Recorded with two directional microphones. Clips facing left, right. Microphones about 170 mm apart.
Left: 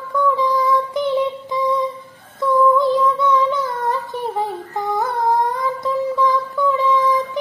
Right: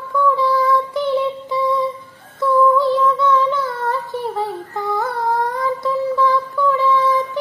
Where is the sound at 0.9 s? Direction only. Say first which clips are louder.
Even; 15° left (ahead or behind).